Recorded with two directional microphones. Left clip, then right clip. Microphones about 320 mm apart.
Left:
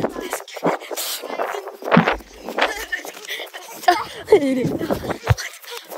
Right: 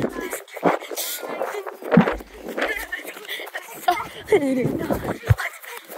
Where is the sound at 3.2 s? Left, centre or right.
Centre.